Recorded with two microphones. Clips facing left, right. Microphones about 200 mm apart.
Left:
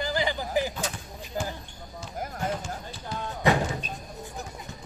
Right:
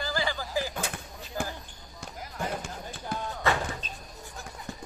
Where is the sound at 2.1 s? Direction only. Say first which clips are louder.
Left 4 dB; 50° left (ahead or behind).